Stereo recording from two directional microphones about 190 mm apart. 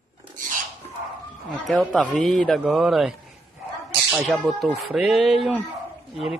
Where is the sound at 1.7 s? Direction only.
Centre (ahead or behind).